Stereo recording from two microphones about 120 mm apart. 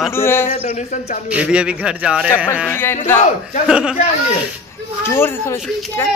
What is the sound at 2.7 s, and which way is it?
Speech, 20° left (ahead or behind).